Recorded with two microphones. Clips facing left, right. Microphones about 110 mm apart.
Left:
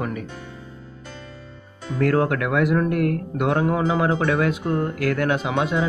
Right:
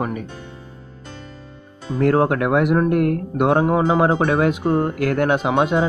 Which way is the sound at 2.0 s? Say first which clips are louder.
Right 3 dB; 25° right (ahead or behind).